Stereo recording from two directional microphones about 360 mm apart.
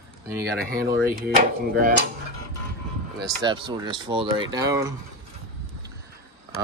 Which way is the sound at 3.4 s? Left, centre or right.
Centre.